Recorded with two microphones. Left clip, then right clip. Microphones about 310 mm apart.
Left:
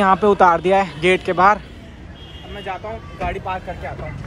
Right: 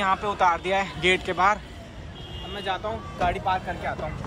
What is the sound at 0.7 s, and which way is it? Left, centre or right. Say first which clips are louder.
Speech: left 7 dB; right.